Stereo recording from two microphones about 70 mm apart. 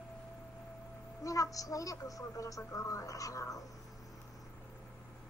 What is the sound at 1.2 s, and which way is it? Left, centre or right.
A woman's voice, left.